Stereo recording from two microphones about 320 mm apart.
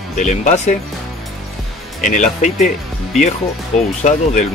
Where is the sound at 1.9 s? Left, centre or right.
Left.